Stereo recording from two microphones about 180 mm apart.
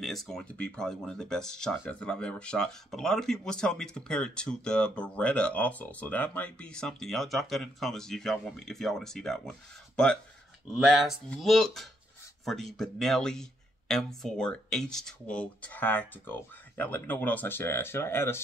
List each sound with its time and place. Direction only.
0.0 s speech: centre (ahead or behind)